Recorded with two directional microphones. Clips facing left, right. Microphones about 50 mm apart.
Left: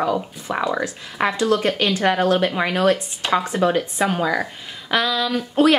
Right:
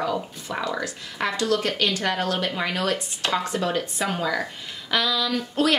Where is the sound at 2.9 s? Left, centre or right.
Centre.